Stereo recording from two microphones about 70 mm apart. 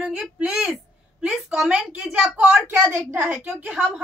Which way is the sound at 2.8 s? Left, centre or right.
Right.